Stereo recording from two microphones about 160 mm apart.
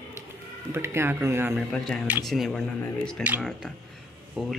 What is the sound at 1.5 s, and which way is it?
Speech, centre (ahead or behind).